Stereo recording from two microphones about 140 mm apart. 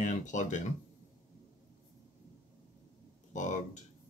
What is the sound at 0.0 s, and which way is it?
Speech, 60° left (ahead or behind).